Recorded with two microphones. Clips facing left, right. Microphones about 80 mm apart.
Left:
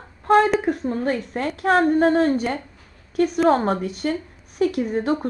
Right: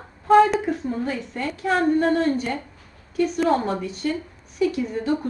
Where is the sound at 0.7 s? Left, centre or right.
Left.